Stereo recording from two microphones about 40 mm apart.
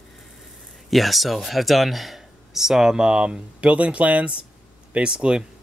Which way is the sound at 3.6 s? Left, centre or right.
Right.